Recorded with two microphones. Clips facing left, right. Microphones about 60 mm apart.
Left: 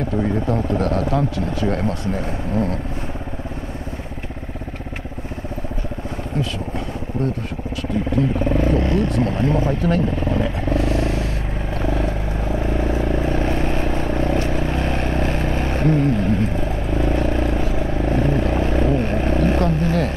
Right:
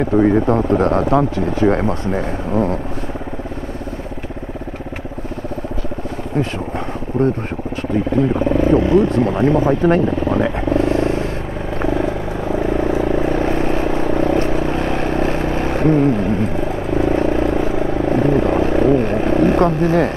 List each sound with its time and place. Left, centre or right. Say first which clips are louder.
0.0 s speech: right 8 dB; right
7.2 s speech: right 7 dB; right
8.2 s wild animals: right 4 dB; right
8.5 s speech: right 5 dB; centre
9.3 s wild animals: right 5 dB; right
9.7 s speech: right 6 dB; right
10.7 s vehicle: right 5 dB; right